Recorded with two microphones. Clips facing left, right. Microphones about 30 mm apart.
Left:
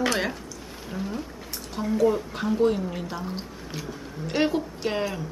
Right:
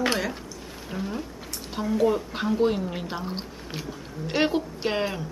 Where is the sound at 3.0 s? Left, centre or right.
Right.